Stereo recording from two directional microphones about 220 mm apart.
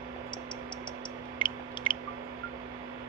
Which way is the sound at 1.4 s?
20° left (ahead or behind).